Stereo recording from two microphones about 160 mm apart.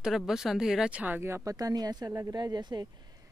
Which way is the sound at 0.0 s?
5° right (ahead or behind).